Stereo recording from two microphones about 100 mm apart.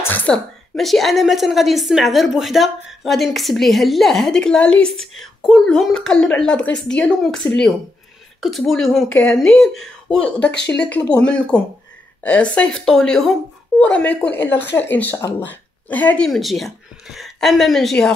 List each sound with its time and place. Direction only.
0.0 s a sound: 20° left (ahead or behind)
0.3 s a woman's voice: centre (ahead or behind)
14.4 s speech: 25° left (ahead or behind)
16.3 s a woman's voice: centre (ahead or behind)